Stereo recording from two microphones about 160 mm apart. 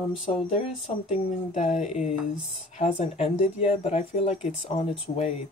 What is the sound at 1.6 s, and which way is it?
Speech, 50° left (ahead or behind).